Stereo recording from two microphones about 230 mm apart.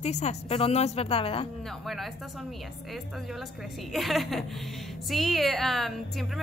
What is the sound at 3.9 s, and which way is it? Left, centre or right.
A woman's voice, centre.